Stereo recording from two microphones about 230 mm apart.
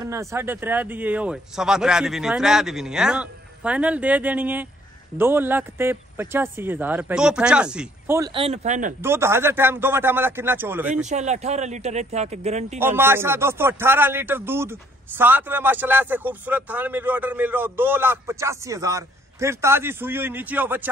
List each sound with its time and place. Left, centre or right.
0.0 s a man's voice: centre
8.2 s speech: right
9.0 s a man's voice: centre
11.1 s speech: right
12.7 s a man's voice: centre